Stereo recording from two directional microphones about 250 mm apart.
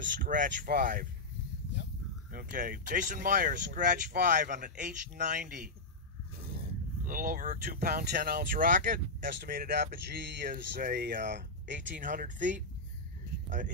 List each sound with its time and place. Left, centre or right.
0.2 s speech: right
2.3 s speech: right